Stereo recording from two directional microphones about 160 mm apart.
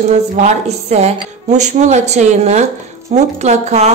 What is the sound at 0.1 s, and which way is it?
A woman's voice, 45° right (ahead or behind).